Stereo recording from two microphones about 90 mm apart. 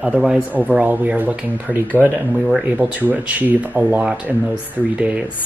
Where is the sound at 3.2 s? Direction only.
15° right (ahead or behind).